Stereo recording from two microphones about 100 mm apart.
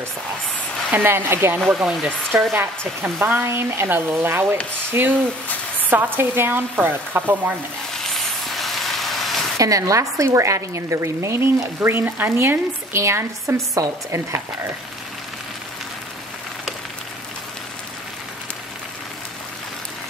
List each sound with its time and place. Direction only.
0.9 s a woman's voice: 25° right (ahead or behind)
1.7 s a woman's voice: 5° right (ahead or behind)
8.0 s vehicle: centre (ahead or behind)
9.6 s a woman's voice: 35° right (ahead or behind)